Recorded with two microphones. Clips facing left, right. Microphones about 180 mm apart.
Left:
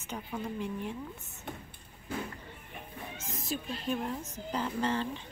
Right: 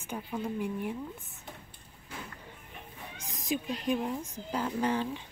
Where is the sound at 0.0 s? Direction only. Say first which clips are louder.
Right 2 dB; 10° right (ahead or behind).